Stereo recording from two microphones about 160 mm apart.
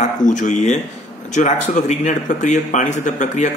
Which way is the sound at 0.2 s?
50° left (ahead or behind).